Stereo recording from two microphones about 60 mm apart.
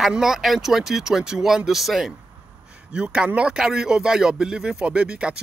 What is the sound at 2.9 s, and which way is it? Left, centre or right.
Speech, centre.